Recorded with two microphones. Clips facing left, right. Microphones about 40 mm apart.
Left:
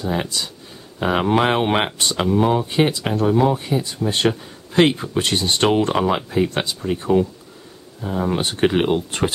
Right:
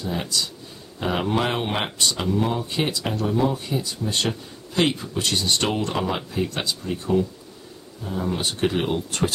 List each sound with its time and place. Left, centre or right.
0.0 s speech: left